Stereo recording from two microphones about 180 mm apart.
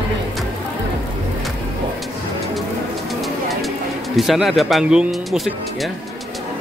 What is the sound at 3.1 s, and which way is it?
Bird, centre (ahead or behind).